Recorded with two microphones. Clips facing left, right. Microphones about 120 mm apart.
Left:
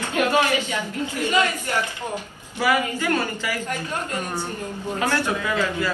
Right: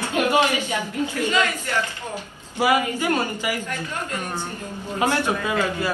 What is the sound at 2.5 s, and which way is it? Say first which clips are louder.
A woman's voice: right 2 dB; 15° right (ahead or behind).